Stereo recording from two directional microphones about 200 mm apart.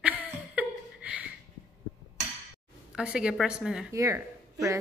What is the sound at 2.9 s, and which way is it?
Speech, 5° right (ahead or behind).